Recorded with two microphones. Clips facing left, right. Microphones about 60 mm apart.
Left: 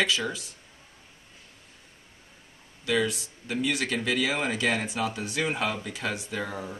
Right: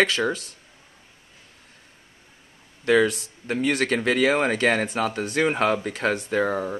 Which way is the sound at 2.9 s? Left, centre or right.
Right.